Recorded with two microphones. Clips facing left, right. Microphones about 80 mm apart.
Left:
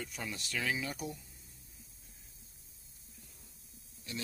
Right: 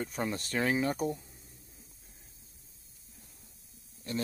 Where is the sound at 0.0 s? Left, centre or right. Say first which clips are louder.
Right 8 dB; right.